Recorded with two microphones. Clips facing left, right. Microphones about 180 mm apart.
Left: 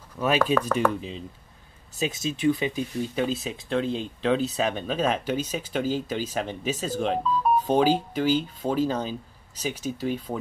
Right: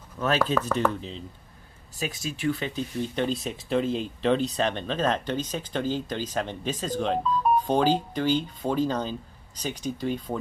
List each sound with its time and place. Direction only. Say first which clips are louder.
0.2 s speech: left 2 dB; 10° left (ahead or behind)
2.0 s speech: left 4 dB; 20° left (ahead or behind); by 10.4 s 5° left (ahead or behind)